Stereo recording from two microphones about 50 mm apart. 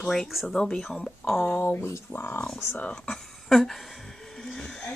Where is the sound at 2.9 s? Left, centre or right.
Centre.